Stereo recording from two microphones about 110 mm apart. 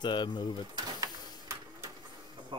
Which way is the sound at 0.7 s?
30° right (ahead or behind).